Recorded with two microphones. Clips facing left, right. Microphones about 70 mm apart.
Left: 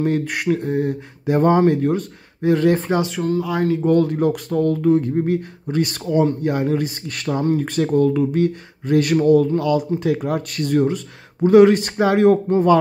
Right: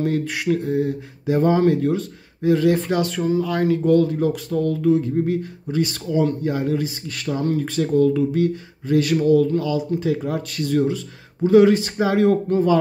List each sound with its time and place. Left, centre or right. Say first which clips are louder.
0.0 s speech: left 2 dB; left
2.7 s speech: left 1 dB; left
3.2 s speech: even; centre
4.0 s speech: left 2 dB; left
9.6 s speech: left 3 dB; left